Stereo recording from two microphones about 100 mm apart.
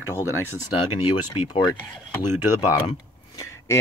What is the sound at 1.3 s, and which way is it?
Speech, 45° left (ahead or behind).